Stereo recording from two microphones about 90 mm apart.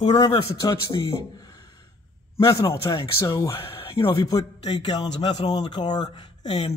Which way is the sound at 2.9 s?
50° left (ahead or behind).